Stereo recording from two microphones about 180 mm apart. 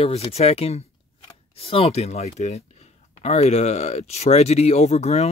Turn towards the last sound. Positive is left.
turn(degrees=35)  # may be behind; listen again after turning